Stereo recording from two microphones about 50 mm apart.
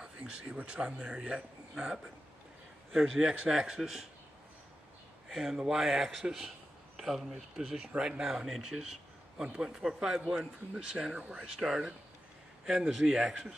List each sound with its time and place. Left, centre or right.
0.0 s a sound: centre
0.6 s speech: centre
5.3 s speech: centre